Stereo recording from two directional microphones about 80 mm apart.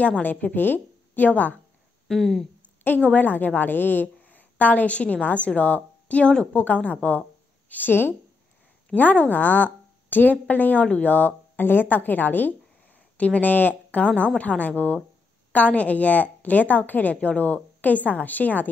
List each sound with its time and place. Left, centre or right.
0.0 s a woman's voice: centre
2.0 s speech: centre
3.1 s a woman's voice: left